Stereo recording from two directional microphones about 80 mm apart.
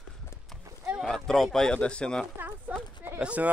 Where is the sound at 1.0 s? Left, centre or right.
Centre.